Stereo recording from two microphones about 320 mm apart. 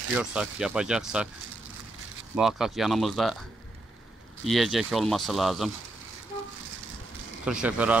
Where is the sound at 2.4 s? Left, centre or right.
Centre.